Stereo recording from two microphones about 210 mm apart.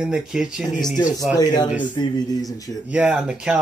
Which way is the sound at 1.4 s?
20° left (ahead or behind).